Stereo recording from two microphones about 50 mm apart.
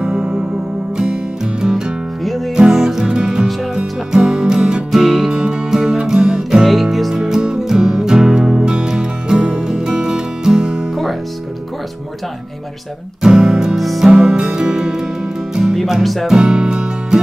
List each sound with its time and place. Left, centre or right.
0.0 s music: centre
6.7 s music: centre
13.2 s music: centre
13.7 s music: centre
14.1 s music: centre
15.7 s music: centre
16.3 s music: centre